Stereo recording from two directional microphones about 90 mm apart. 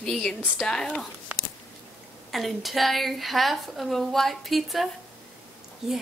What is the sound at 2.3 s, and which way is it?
A woman's voice, centre (ahead or behind).